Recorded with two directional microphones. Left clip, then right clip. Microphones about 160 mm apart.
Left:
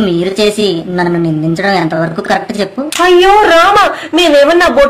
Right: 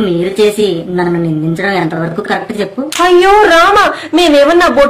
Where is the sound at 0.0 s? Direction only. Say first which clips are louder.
Even; 45° left (ahead or behind).